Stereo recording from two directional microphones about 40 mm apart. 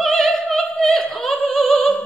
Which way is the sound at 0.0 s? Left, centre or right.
Centre.